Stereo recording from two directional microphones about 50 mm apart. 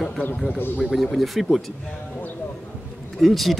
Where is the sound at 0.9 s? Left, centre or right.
Centre.